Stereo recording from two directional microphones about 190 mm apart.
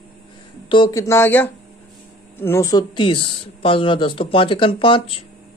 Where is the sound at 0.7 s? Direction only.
20° left (ahead or behind).